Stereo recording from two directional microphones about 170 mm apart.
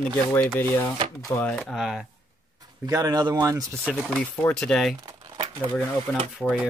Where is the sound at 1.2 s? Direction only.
15° left (ahead or behind).